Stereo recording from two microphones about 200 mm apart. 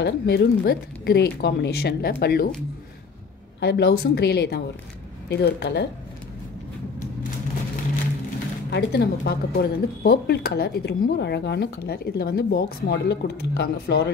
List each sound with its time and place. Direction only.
0.0 s speech: 55° left (ahead or behind)
3.6 s speech: 55° left (ahead or behind)
8.6 s speech: 55° left (ahead or behind)